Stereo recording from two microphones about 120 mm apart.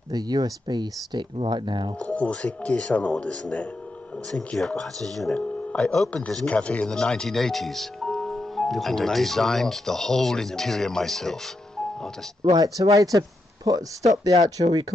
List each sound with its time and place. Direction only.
0.1 s speech: 35° right (ahead or behind)
2.0 s speech: 10° left (ahead or behind)
12.4 s speech: 30° right (ahead or behind)